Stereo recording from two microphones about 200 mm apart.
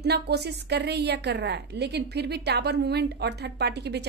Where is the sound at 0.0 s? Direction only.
55° right (ahead or behind).